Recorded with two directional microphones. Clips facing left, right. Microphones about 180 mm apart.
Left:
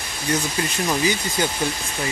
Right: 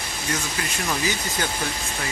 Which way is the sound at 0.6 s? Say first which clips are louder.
Left 5 dB; 25° left (ahead or behind).